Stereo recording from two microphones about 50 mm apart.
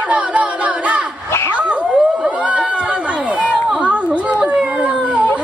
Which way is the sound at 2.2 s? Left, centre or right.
Centre.